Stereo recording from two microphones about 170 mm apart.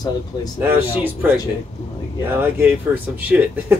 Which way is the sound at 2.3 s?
10° right (ahead or behind).